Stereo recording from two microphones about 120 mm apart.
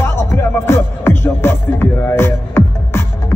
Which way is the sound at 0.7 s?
20° left (ahead or behind).